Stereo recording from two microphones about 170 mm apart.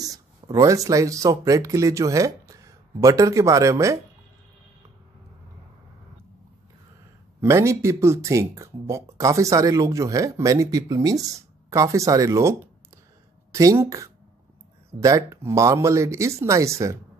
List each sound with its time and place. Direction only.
0.0 s speech: 20° right (ahead or behind)
7.3 s speech: 15° right (ahead or behind)